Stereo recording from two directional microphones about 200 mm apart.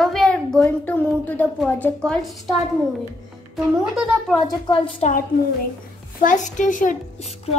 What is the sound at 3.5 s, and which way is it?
Speech, centre (ahead or behind).